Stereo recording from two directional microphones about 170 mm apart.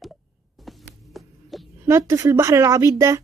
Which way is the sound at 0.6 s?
Centre (ahead or behind).